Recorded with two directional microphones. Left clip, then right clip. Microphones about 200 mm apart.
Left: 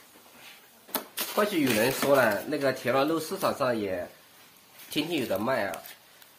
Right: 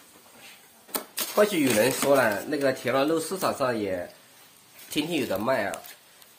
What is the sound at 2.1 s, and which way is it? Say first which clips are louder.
Speech: right 1 dB; 10° right (ahead or behind).